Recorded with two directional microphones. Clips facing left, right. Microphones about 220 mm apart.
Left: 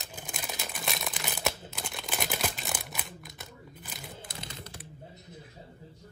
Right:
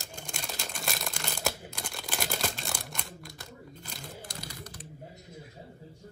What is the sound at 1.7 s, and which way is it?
Crumpling, centre (ahead or behind).